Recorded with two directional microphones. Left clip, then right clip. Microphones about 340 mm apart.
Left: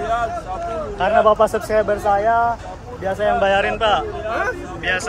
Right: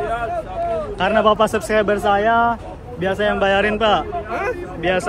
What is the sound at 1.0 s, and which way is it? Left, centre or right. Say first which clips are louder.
Speech: left 2 dB; right.